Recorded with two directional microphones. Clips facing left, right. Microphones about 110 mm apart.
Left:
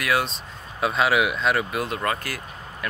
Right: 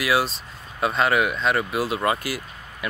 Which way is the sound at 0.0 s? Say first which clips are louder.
Right 2 dB; centre (ahead or behind).